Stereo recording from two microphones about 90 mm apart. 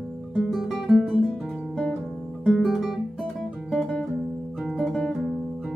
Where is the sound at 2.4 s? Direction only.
5° right (ahead or behind).